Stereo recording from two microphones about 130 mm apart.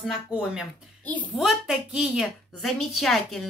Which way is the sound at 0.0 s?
5° right (ahead or behind).